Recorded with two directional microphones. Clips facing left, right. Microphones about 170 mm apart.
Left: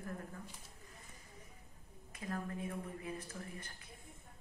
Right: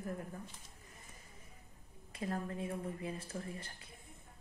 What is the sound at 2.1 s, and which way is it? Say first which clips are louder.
A woman's voice: right 3 dB; 30° right (ahead or behind).